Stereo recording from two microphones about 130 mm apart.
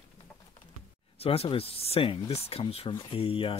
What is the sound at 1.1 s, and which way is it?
Speech, 50° left (ahead or behind).